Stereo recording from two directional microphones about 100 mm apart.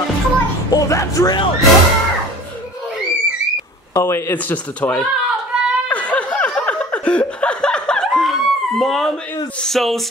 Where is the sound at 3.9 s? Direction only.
25° left (ahead or behind).